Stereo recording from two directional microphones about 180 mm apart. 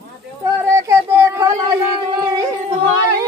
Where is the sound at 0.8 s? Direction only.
15° right (ahead or behind).